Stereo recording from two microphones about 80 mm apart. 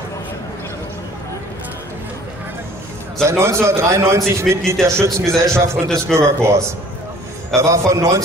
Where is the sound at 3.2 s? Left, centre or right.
Right.